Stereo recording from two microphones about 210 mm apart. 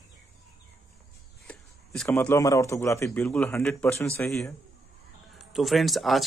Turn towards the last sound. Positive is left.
turn(degrees=0)  # may be behind; listen again after turning